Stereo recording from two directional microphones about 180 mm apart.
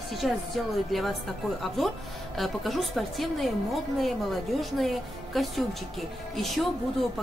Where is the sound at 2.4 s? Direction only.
Centre (ahead or behind).